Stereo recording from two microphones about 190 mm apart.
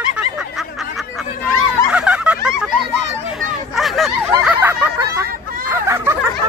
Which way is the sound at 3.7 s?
Centre (ahead or behind).